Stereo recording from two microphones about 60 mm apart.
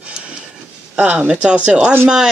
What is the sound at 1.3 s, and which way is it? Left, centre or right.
Speech, centre.